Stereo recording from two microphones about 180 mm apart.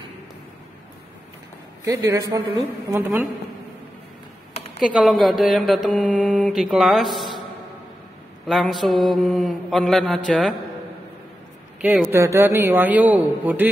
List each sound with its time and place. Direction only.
1.9 s a man's voice: 15° right (ahead or behind)
4.7 s mantra: centre (ahead or behind)
8.5 s mantra: centre (ahead or behind)
11.8 s a man's voice: 10° right (ahead or behind)